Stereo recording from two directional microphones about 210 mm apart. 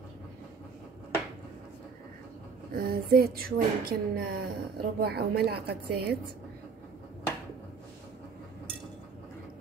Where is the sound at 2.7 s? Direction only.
45° right (ahead or behind).